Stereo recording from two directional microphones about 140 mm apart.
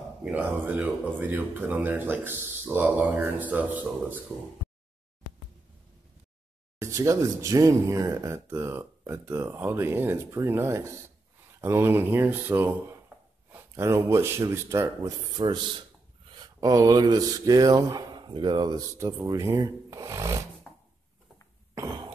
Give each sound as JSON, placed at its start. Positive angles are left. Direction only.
{"t": 0.2, "sound": "speech", "side_deg": -10}
{"t": 6.8, "sound": "speech", "side_deg": -20}
{"t": 20.7, "sound": "a sound", "side_deg": 5}
{"t": 21.7, "sound": "cough", "side_deg": -25}